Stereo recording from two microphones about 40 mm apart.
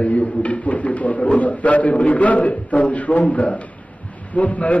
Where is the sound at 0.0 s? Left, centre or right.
Left.